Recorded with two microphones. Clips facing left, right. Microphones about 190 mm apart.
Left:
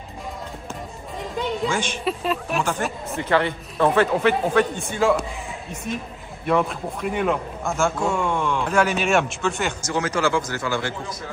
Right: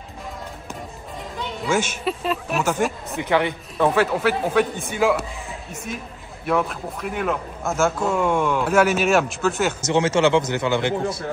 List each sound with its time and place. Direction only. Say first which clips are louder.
1.7 s a man's voice: right 2 dB; 5° right (ahead or behind)
6.4 s a man's voice: left 1 dB; centre (ahead or behind)
9.8 s a man's voice: right 5 dB; 25° right (ahead or behind)